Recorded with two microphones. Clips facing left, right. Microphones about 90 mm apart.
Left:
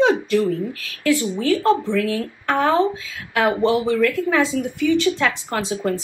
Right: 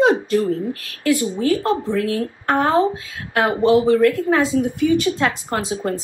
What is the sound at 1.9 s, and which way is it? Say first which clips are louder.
Speech: right 1 dB; 35° right (ahead or behind).